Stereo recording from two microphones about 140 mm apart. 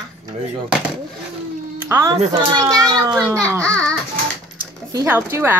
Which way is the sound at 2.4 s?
30° right (ahead or behind).